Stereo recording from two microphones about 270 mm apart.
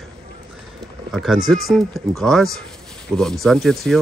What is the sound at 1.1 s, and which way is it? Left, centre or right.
Speech, centre.